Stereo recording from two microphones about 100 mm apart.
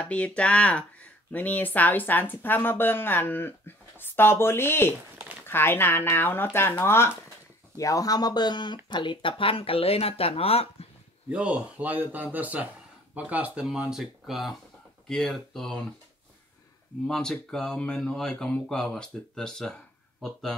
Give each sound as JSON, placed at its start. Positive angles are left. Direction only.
{"t": 0.0, "sound": "speech", "side_deg": 15}
{"t": 7.7, "sound": "speech", "side_deg": 35}
{"t": 11.2, "sound": "speech", "side_deg": -10}
{"t": 17.0, "sound": "speech", "side_deg": 5}